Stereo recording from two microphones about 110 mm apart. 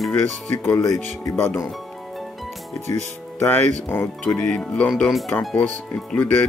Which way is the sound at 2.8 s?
90° right.